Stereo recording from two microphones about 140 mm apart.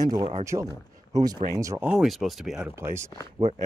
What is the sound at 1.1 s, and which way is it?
Speech, 25° right (ahead or behind).